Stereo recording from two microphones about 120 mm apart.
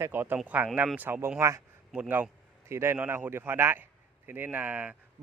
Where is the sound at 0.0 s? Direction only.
15° right (ahead or behind).